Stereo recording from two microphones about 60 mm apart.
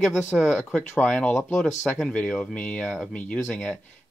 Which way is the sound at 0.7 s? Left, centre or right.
Centre.